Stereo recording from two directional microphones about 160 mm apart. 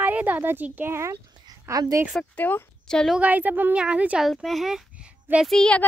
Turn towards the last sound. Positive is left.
turn(degrees=5)  # may be behind; listen again after turning